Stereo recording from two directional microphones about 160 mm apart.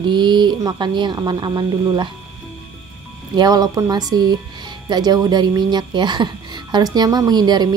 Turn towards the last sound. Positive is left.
turn(degrees=-25)  # may be behind; listen again after turning